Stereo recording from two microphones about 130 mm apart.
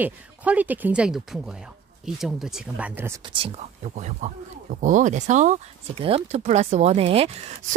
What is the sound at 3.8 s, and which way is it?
Speech, 65° right (ahead or behind).